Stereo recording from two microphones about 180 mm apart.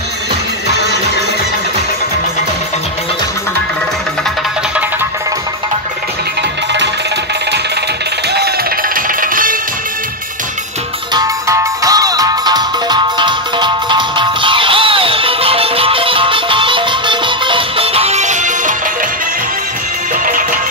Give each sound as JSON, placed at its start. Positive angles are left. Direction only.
{"t": 9.2, "sound": "music", "side_deg": -50}
{"t": 11.1, "sound": "music", "side_deg": -20}